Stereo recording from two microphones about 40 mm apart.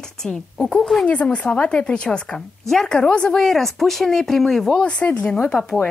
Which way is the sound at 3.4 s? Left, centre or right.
Centre.